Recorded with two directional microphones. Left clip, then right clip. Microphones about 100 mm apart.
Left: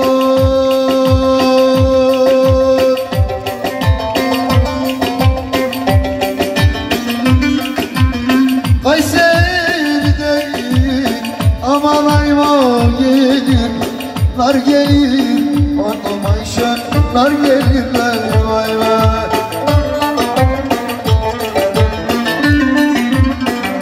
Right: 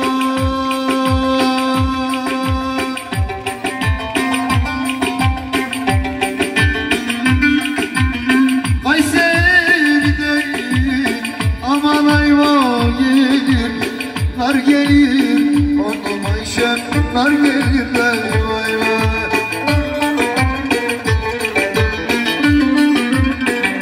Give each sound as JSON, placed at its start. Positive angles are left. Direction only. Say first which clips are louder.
{"t": 0.0, "sound": "music", "louder": "left 6 dB", "side_deg": 45}
{"t": 5.0, "sound": "music", "louder": "left 3 dB", "side_deg": 40}
{"t": 16.9, "sound": "music", "louder": "left 3 dB", "side_deg": 30}
{"t": 21.5, "sound": "music", "louder": "left 3 dB", "side_deg": 40}